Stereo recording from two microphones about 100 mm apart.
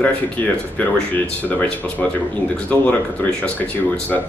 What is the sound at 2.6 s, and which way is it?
Speech, 15° left (ahead or behind).